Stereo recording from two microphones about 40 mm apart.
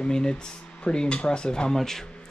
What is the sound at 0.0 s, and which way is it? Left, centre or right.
Speech, left.